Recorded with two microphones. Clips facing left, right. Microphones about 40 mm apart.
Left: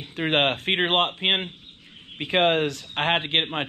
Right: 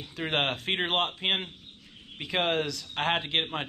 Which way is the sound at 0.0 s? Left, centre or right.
Left.